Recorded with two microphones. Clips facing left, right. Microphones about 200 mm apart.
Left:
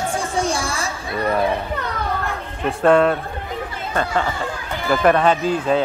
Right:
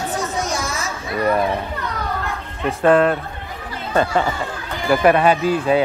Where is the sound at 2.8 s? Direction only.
Centre (ahead or behind).